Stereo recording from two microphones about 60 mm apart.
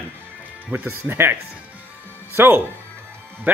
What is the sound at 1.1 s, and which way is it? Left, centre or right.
Speech, right.